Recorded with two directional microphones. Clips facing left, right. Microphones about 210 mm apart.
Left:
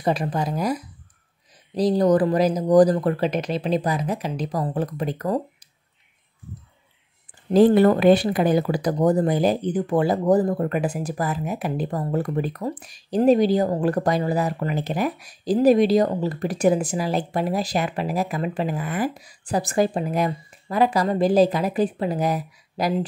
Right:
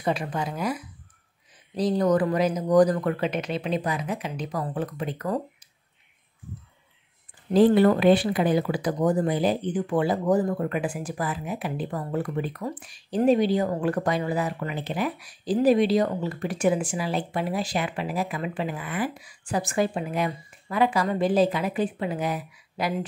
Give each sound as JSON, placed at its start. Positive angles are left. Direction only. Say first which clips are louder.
{"t": 0.0, "sound": "speech", "louder": "left 4 dB", "side_deg": 35}
{"t": 7.5, "sound": "speech", "louder": "left 3 dB", "side_deg": 45}